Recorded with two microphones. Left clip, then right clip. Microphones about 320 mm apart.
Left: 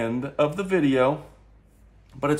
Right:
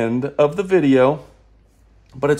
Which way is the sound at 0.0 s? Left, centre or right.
Right.